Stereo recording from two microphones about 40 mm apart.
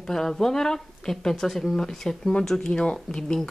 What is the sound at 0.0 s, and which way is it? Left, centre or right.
Speech, centre.